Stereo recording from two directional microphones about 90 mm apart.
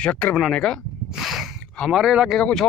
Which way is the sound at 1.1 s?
5° right (ahead or behind).